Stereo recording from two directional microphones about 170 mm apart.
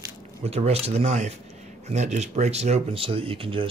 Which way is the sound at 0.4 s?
35° right (ahead or behind).